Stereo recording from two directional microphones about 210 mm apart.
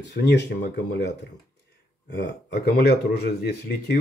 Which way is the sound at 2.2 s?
50° left (ahead or behind).